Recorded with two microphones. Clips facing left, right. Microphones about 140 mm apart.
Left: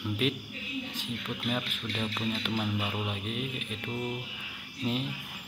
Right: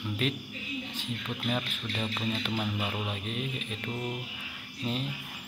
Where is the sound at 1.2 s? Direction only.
5° right (ahead or behind).